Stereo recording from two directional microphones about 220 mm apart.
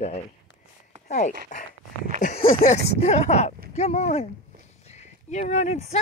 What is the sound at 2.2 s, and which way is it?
Speech, 25° left (ahead or behind).